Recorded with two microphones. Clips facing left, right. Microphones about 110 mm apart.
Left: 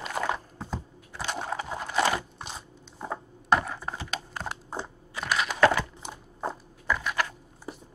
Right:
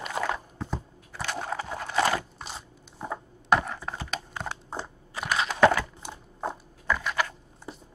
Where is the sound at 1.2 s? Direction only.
20° left (ahead or behind).